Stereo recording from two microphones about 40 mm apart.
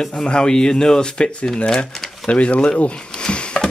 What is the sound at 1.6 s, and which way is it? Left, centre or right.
Speech, centre.